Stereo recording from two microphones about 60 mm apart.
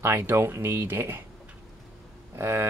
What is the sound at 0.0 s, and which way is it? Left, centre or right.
Speech, right.